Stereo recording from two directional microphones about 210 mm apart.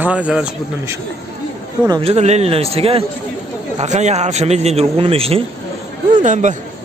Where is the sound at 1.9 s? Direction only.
25° right (ahead or behind).